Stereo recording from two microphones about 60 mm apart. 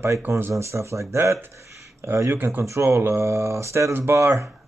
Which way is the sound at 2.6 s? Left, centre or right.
Right.